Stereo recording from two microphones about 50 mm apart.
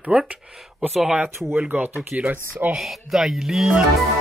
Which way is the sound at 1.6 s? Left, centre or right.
Right.